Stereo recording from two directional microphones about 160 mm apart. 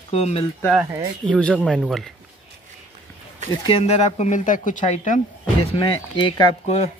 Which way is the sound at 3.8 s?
45° left (ahead or behind).